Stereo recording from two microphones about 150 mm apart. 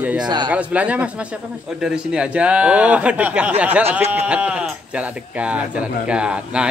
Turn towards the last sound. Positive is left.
turn(degrees=-5)  # may be behind; listen again after turning